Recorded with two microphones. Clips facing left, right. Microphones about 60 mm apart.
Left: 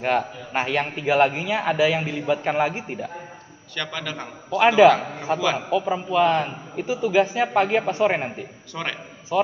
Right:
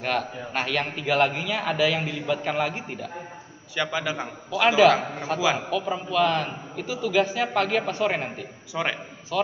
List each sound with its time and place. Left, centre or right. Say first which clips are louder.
0.0 s a man's voice: left 4 dB; centre
3.7 s a man's voice: right 3 dB; centre
4.6 s a man's voice: left 4 dB; centre
4.9 s a man's voice: even; centre
5.7 s a man's voice: left 4 dB; centre
8.8 s a man's voice: right 3 dB; centre
9.3 s a man's voice: left 4 dB; centre